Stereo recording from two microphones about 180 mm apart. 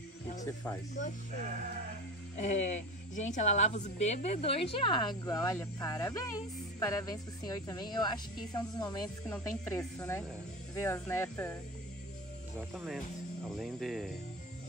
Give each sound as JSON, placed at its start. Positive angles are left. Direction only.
{"t": 0.4, "sound": "a woman's voice", "side_deg": 20}
{"t": 2.3, "sound": "a woman's voice", "side_deg": 40}
{"t": 12.7, "sound": "speech", "side_deg": 0}